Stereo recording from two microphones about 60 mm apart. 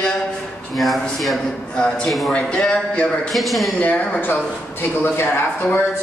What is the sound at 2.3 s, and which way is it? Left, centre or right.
Speech, centre.